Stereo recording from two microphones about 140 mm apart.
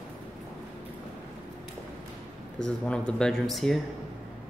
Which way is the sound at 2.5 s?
5° left (ahead or behind).